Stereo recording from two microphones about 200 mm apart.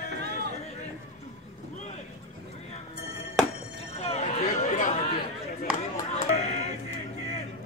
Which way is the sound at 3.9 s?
35° left (ahead or behind).